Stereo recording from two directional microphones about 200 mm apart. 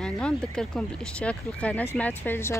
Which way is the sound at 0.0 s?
5° left (ahead or behind).